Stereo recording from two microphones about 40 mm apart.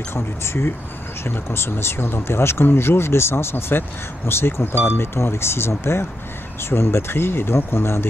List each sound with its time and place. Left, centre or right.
0.1 s speech: left